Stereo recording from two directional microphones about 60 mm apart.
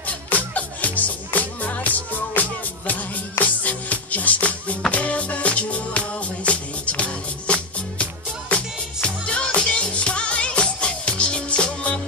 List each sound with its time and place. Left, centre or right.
0.6 s music: left